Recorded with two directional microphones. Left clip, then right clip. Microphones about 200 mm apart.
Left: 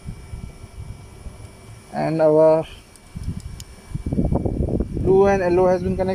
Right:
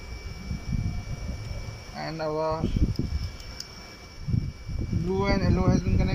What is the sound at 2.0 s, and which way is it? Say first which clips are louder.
Speech: left 14 dB; 45° left (ahead or behind).